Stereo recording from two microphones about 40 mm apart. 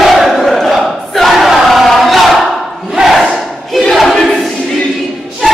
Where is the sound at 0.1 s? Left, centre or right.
Centre.